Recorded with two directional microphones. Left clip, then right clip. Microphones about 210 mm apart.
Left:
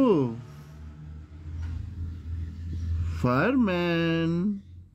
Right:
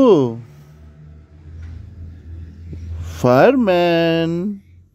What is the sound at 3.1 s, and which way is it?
Speech, 35° right (ahead or behind).